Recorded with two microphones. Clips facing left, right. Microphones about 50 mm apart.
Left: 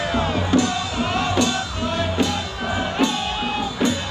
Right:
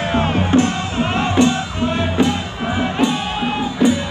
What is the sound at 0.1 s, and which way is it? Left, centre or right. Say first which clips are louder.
Music: right 4 dB; right.